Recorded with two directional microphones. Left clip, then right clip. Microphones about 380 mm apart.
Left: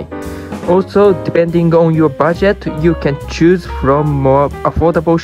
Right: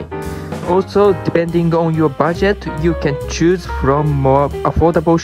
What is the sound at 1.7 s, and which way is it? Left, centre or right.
Speech, centre.